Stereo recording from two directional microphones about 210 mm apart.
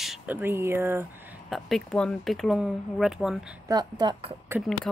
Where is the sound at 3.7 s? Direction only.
20° right (ahead or behind).